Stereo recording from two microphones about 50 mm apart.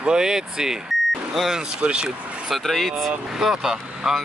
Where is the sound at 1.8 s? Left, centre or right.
Right.